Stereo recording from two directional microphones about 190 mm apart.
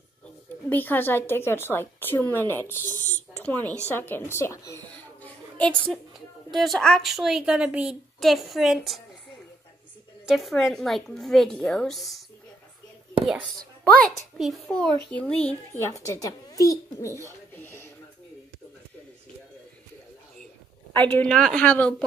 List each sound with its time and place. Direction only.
0.7 s a woman's voice: 10° left (ahead or behind)
10.2 s a woman's voice: centre (ahead or behind)
13.9 s a woman's voice: centre (ahead or behind)
15.8 s a woman's voice: 15° left (ahead or behind)
20.9 s a woman's voice: 10° left (ahead or behind)